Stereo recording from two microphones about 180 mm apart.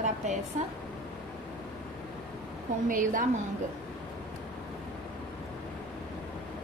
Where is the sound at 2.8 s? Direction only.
45° right (ahead or behind).